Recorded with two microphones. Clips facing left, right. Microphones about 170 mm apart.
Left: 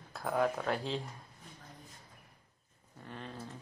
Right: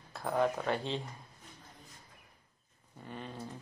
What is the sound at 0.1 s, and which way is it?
Speech, centre (ahead or behind).